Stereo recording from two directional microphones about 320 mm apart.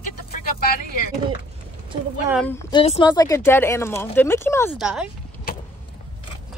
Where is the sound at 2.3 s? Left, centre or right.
Centre.